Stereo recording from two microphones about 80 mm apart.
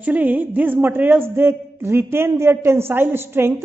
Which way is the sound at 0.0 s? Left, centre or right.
Right.